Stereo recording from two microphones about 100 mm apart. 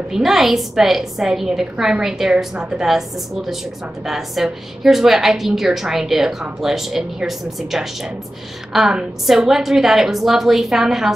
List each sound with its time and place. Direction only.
0.1 s a woman's voice: centre (ahead or behind)